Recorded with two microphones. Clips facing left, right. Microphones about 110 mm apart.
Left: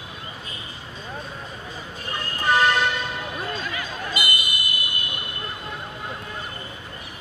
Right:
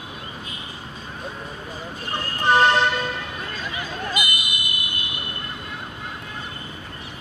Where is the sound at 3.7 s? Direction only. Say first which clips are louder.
Right 2 dB; 20° right (ahead or behind).